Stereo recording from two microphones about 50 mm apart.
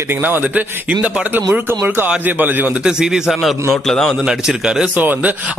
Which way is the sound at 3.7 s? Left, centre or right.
Centre.